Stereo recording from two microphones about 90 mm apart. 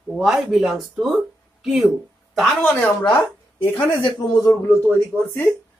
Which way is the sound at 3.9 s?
40° left (ahead or behind).